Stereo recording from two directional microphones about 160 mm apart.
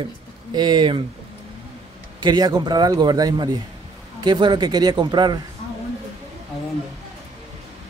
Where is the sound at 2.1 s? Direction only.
25° right (ahead or behind).